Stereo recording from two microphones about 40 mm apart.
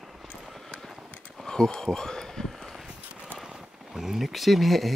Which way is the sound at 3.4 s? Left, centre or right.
Centre.